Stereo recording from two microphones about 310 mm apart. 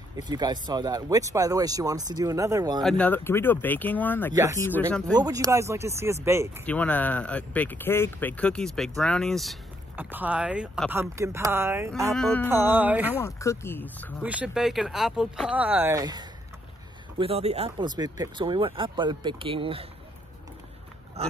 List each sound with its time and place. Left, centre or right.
0.1 s speech: centre
2.8 s speech: centre
5.1 s speech: centre
6.6 s speech: centre
13.2 s speech: centre
14.2 s speech: centre
21.2 s speech: centre